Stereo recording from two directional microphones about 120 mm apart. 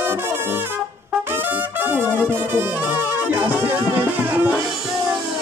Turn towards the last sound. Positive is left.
turn(degrees=-15)  # may be behind; listen again after turning